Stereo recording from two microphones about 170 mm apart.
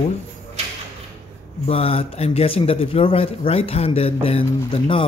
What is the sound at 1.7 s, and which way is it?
Speech, 35° left (ahead or behind).